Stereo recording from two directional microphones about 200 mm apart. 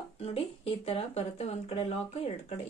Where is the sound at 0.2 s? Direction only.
30° left (ahead or behind).